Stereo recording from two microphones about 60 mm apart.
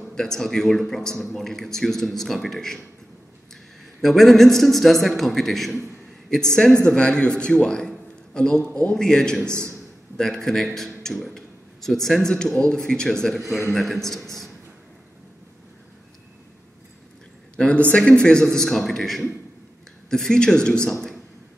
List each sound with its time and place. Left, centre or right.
0.1 s a man's voice: centre
4.0 s a man's voice: centre
13.4 s a man's voice: centre
17.6 s a man's voice: left
18.6 s a man's voice: centre